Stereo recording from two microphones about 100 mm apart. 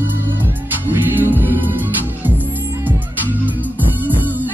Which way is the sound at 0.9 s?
20° right (ahead or behind).